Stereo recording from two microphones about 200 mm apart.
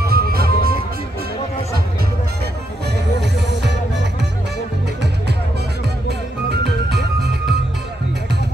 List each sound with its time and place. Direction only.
0.0 s music: 50° right (ahead or behind)
3.2 s music: 60° right (ahead or behind)
6.0 s music: 55° right (ahead or behind)